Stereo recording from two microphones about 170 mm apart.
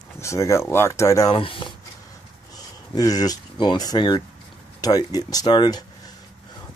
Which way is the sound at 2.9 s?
20° left (ahead or behind).